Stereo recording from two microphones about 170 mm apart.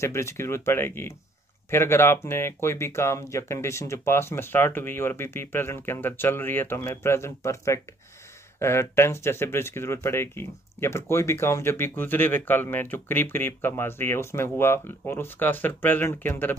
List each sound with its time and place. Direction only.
0.0 s speech: 15° left (ahead or behind)